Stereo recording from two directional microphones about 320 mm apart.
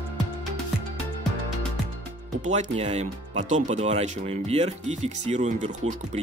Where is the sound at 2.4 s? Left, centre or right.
Right.